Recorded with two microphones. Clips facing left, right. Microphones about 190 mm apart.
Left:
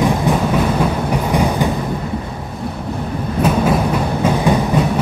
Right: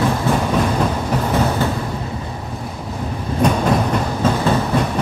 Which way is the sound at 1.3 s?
15° left (ahead or behind).